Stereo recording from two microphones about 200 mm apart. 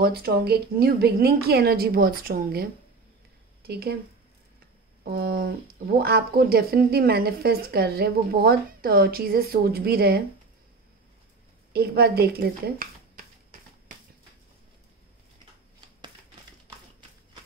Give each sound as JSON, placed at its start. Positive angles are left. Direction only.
{"t": 0.0, "sound": "speech", "side_deg": -50}
{"t": 5.0, "sound": "speech", "side_deg": -50}
{"t": 11.7, "sound": "speech", "side_deg": -50}